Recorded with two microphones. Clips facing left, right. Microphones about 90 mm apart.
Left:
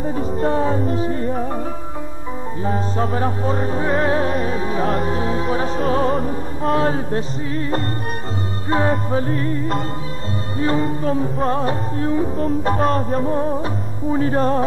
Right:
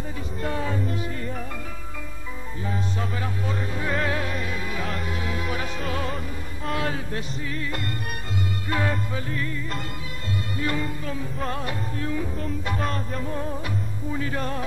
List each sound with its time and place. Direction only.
0.0 s music: 40° left (ahead or behind)
2.6 s music: 40° left (ahead or behind)